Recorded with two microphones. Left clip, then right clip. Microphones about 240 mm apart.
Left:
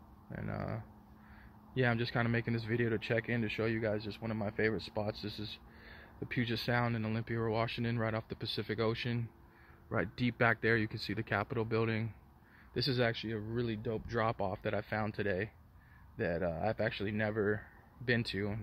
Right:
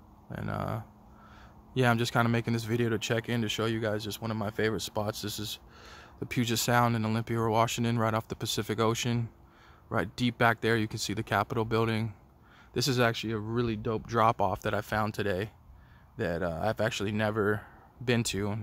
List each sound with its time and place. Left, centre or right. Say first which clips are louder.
0.3 s cattle: right 7 dB; centre
1.7 s speech: right 6 dB; right
9.8 s speech: right 5 dB; centre